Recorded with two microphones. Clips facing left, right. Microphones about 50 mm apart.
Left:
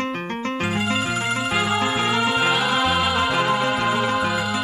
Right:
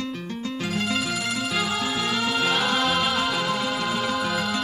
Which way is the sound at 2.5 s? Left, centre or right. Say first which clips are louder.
Left 3 dB; centre.